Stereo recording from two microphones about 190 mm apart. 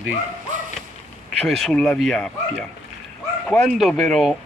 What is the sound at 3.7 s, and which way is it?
Speech, centre (ahead or behind).